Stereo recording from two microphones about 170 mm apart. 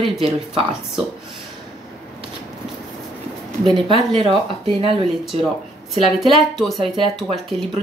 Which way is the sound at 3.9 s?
35° right (ahead or behind).